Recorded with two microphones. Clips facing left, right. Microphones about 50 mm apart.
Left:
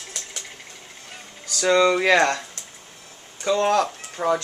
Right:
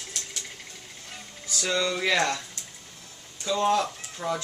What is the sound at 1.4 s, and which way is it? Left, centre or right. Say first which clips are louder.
Speech: left 9 dB; left.